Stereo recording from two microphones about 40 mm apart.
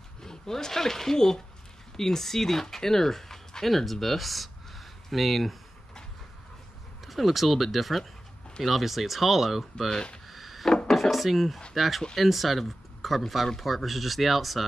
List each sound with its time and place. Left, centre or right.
0.2 s speech: centre
7.1 s speech: centre
9.8 s speech: centre
10.2 s a sound: centre
10.9 s speech: centre